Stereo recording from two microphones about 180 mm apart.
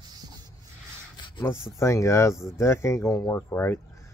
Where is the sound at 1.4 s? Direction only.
15° left (ahead or behind).